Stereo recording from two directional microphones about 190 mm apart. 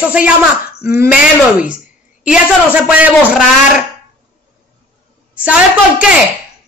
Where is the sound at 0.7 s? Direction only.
55° left (ahead or behind).